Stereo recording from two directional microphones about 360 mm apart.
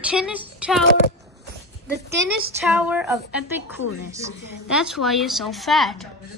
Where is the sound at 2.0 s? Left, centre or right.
Centre.